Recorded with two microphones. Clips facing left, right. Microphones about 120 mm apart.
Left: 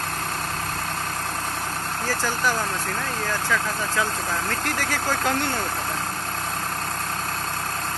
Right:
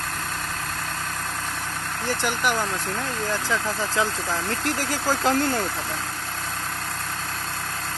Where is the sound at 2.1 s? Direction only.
20° right (ahead or behind).